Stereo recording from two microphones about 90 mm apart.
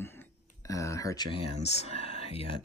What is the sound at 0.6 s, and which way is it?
Speech, 35° left (ahead or behind).